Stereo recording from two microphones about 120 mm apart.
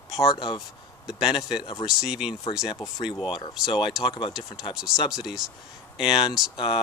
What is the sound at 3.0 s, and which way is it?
Speech, 45° left (ahead or behind).